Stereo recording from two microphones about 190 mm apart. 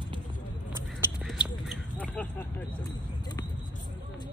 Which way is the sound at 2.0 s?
5° left (ahead or behind).